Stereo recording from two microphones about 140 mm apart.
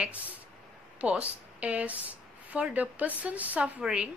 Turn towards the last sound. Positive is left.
turn(degrees=-10)  # may be behind; listen again after turning